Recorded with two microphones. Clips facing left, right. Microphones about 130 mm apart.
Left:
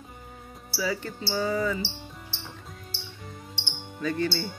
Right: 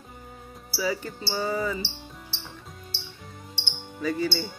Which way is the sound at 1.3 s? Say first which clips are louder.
Left 1 dB; 10° right (ahead or behind).